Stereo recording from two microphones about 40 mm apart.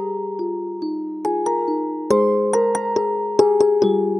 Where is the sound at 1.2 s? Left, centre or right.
Centre.